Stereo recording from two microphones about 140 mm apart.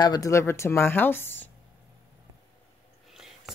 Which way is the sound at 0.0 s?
25° left (ahead or behind).